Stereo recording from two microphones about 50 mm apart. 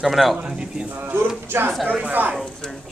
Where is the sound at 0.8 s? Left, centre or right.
Right.